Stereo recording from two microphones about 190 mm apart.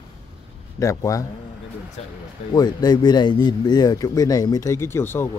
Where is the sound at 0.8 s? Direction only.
15° left (ahead or behind).